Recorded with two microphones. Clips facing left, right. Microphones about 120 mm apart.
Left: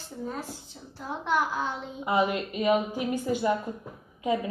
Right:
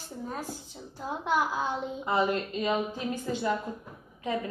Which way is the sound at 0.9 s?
15° right (ahead or behind).